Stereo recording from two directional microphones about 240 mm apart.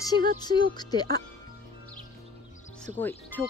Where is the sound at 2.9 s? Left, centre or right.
Centre.